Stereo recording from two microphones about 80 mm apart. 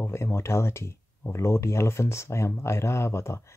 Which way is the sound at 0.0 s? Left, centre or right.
Left.